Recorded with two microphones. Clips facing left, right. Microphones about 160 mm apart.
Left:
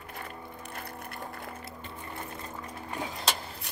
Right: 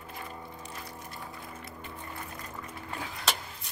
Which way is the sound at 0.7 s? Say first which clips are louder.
Left 2 dB; 60° left (ahead or behind).